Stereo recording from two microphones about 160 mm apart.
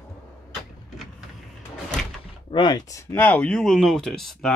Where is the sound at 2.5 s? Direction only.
25° left (ahead or behind); by 4.5 s centre (ahead or behind).